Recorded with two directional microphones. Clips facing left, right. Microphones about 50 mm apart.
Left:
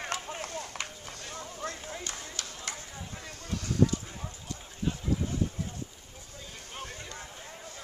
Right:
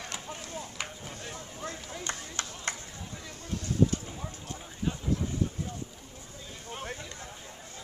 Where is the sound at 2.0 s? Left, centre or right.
Right.